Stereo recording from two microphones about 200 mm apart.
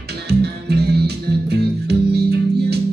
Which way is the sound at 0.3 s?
55° right (ahead or behind).